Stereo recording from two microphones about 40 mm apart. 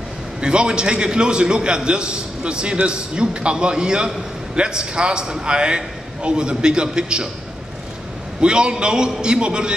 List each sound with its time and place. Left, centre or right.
0.4 s a man's voice: right
8.4 s a man's voice: right